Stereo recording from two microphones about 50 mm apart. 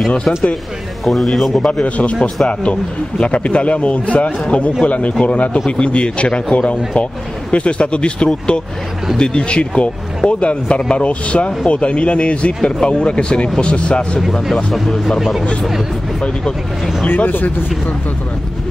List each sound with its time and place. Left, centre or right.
1.0 s speech: centre
1.7 s speech: left
2.1 s speech: centre
2.4 s speech: left
14.3 s speech: centre
17.1 s speech: left